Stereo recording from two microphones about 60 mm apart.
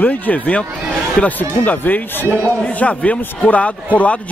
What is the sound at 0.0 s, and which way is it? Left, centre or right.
A man's voice, left.